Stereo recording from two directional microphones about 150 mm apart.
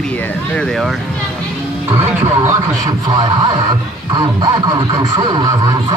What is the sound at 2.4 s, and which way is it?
Speech, 20° right (ahead or behind).